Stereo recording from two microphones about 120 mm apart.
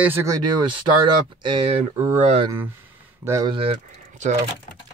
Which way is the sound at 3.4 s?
45° right (ahead or behind).